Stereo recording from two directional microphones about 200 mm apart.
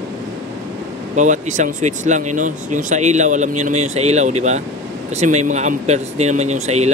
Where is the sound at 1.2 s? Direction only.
35° right (ahead or behind).